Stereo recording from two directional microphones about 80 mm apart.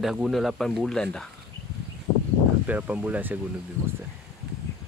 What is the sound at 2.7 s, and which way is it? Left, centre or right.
Speech, centre.